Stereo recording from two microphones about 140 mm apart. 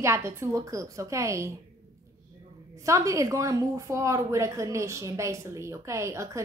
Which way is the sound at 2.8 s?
20° right (ahead or behind).